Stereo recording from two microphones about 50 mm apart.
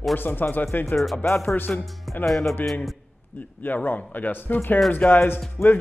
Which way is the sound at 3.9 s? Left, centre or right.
Left.